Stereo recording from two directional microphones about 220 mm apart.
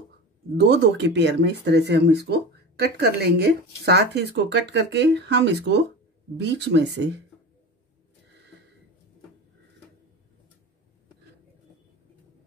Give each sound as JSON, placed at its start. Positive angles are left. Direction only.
{"t": 0.6, "sound": "speech", "side_deg": -50}